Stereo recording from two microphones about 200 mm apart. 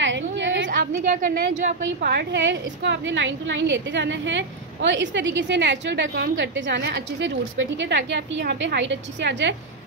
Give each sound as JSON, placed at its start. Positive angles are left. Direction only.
{"t": 0.0, "sound": "a sound", "side_deg": -65}
{"t": 1.3, "sound": "speech", "side_deg": -40}
{"t": 2.0, "sound": "a woman's voice", "side_deg": -60}